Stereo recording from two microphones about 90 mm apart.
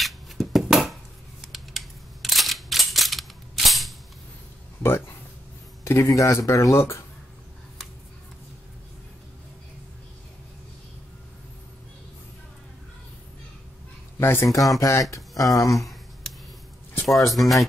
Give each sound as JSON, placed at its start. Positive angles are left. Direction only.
{"t": 0.0, "sound": "a sound", "side_deg": 0}
{"t": 1.4, "sound": "camera", "side_deg": 0}
{"t": 4.8, "sound": "speech", "side_deg": 25}
{"t": 14.2, "sound": "speech", "side_deg": 25}
{"t": 14.5, "sound": "speech", "side_deg": 40}
{"t": 17.3, "sound": "speech", "side_deg": 0}